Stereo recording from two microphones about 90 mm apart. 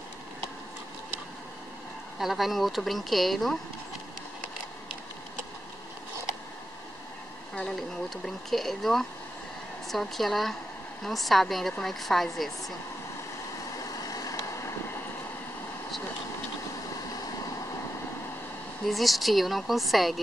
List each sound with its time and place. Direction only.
2.1 s speech: centre (ahead or behind)
7.5 s speech: 5° left (ahead or behind)
14.0 s vehicle: 40° left (ahead or behind)
18.9 s speech: centre (ahead or behind)